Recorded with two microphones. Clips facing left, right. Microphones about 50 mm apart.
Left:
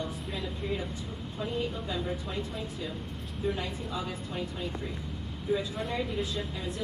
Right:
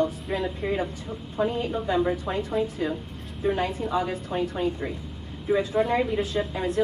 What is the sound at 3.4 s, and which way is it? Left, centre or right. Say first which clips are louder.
A woman's voice: right 8 dB; right.